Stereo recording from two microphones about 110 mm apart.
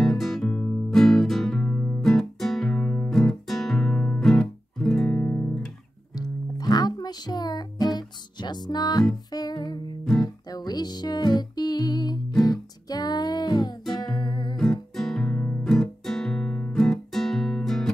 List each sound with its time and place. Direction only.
0.0 s music: centre (ahead or behind)
2.0 s guitar: centre (ahead or behind)
3.1 s guitar: centre (ahead or behind)
6.1 s music: 35° left (ahead or behind)
14.6 s guitar: 5° left (ahead or behind)